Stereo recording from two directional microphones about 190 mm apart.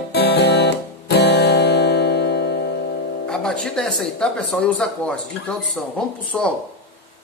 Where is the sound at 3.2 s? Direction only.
5° left (ahead or behind).